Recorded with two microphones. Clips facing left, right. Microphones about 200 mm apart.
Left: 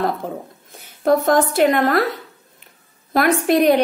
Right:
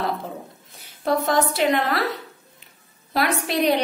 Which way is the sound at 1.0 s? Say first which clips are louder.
Left 5 dB; 50° left (ahead or behind).